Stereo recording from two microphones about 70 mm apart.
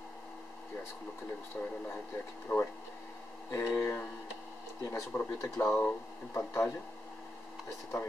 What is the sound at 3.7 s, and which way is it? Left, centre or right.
Speech, left.